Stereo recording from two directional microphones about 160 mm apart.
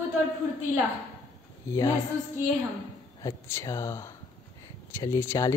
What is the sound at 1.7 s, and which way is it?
Speech, 20° left (ahead or behind).